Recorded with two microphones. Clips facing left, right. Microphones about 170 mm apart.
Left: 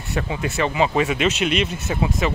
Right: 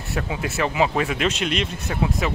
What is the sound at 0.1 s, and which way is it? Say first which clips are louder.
Speech: left 2 dB; centre (ahead or behind).